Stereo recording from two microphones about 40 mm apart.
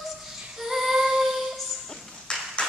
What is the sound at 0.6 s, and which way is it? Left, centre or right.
Child singing, centre.